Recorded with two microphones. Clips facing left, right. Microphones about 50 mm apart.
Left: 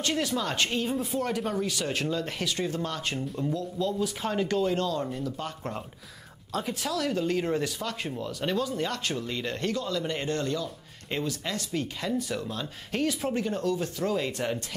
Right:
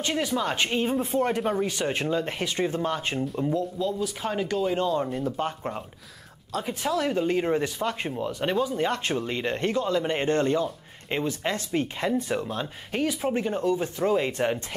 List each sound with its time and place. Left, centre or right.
0.0 s speech: centre
3.7 s speech: centre
4.7 s speech: centre
6.7 s speech: right
12.9 s speech: centre